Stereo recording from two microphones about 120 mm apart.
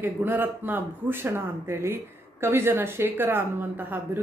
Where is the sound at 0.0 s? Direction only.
15° right (ahead or behind).